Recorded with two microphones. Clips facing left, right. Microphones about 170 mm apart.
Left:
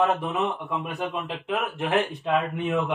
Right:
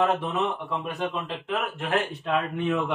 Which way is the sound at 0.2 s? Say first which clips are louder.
Even; 10° left (ahead or behind).